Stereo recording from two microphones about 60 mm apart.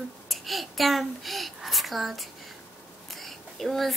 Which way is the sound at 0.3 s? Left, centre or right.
Centre.